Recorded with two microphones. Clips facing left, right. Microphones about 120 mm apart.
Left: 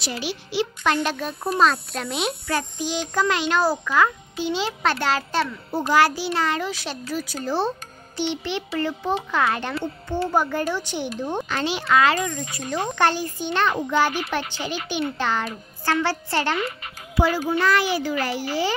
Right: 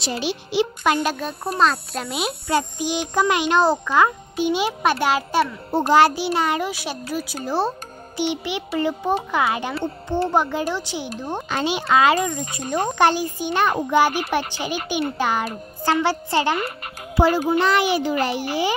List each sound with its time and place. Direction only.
0.0 s a child's voice: 25° right (ahead or behind)
1.0 s speech: 5° right (ahead or behind)
2.4 s a child's voice: 15° right (ahead or behind)
5.7 s a child's voice: 25° right (ahead or behind); by 9.8 s 10° right (ahead or behind)
10.0 s a child's voice: 35° right (ahead or behind)
10.3 s a child's voice: 15° right (ahead or behind)
15.1 s a child's voice: 10° right (ahead or behind)
17.1 s a child's voice: 30° right (ahead or behind)
17.5 s a child's voice: 20° right (ahead or behind)